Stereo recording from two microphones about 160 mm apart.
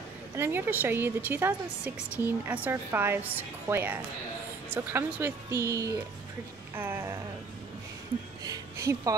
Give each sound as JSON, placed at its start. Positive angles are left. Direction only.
{"t": 0.4, "sound": "a woman's voice", "side_deg": -15}
{"t": 8.5, "sound": "speech", "side_deg": -20}